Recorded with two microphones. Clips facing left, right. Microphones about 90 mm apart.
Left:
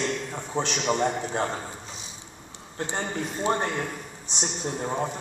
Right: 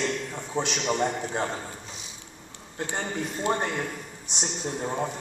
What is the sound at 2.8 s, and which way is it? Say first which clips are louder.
A man's voice: left 1 dB; 25° left (ahead or behind).